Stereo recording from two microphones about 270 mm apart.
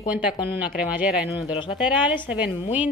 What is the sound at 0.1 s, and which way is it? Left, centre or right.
A woman's voice, centre.